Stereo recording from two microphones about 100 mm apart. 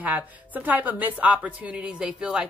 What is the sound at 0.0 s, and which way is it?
A woman's voice, 15° right (ahead or behind).